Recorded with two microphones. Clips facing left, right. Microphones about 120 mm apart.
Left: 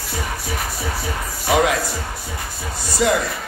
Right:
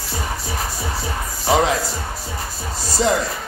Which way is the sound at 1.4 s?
30° right (ahead or behind).